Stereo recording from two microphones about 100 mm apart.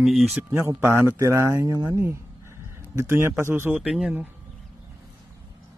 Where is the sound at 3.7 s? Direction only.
5° right (ahead or behind).